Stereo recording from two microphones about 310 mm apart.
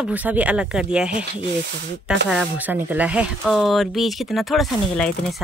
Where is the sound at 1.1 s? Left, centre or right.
Right.